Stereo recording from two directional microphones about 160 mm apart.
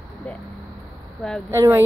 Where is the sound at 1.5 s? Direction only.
15° right (ahead or behind).